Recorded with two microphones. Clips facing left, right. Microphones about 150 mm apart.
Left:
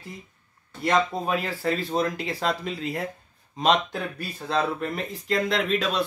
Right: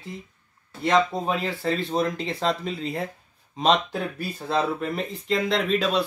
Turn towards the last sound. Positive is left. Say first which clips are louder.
# right 2 dB
turn(degrees=0)  # may be behind; listen again after turning